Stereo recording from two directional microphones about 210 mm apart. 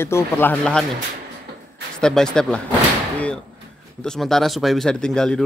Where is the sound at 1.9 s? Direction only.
5° left (ahead or behind).